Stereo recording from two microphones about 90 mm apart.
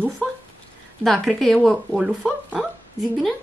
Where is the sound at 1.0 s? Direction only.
5° left (ahead or behind).